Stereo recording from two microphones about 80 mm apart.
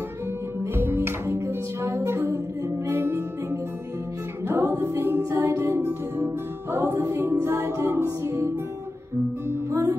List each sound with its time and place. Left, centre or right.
0.7 s music: right
4.5 s music: right